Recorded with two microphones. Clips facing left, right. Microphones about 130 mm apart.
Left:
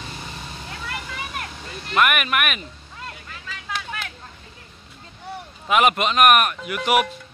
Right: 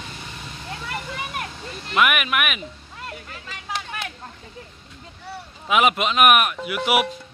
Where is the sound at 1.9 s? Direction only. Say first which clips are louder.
Even; centre (ahead or behind).